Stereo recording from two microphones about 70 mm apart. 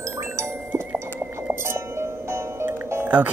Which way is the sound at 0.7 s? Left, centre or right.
Right.